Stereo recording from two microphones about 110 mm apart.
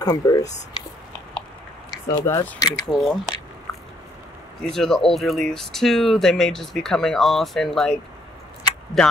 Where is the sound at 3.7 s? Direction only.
30° left (ahead or behind).